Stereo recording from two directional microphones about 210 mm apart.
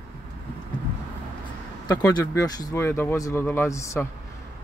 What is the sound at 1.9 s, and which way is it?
Speech, 20° left (ahead or behind).